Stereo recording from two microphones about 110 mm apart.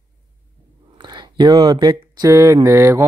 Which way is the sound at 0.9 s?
45° right (ahead or behind).